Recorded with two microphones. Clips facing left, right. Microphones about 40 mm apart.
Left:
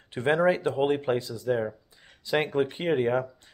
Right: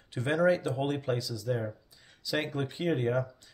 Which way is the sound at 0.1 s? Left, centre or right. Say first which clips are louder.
Left 3 dB; left.